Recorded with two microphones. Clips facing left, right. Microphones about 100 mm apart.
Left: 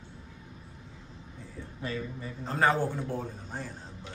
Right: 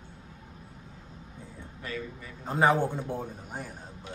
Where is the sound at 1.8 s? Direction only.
25° left (ahead or behind).